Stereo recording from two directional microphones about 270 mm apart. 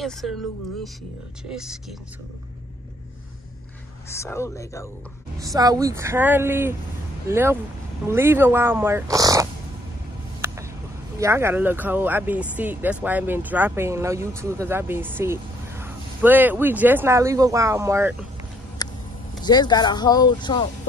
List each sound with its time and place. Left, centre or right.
0.0 s speech: centre
1.5 s speech: centre
4.1 s speech: centre
5.4 s speech: centre
10.4 s vehicle: centre
11.1 s speech: centre
18.8 s a sound: centre
19.4 s speech: centre